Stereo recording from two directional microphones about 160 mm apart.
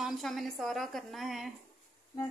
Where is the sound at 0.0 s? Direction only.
Centre (ahead or behind).